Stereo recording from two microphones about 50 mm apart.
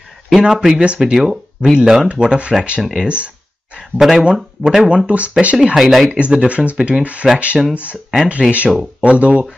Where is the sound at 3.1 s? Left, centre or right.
Right.